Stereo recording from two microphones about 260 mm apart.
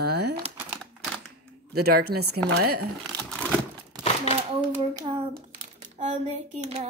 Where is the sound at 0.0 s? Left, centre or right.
Right.